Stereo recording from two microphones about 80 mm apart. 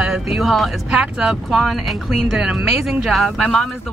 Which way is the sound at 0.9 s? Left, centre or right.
Centre.